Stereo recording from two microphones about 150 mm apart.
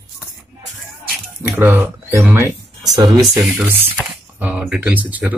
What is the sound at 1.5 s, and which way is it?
Speech, 15° right (ahead or behind).